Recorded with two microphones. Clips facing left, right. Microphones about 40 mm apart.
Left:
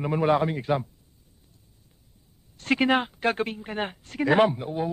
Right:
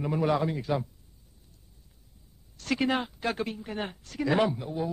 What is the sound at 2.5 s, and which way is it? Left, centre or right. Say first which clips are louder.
A woman's voice: left 5 dB; left.